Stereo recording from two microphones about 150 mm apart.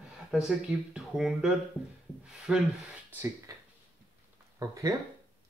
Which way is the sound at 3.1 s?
15° right (ahead or behind).